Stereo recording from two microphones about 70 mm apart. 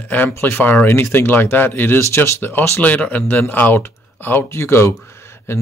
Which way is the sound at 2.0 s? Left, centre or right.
Left.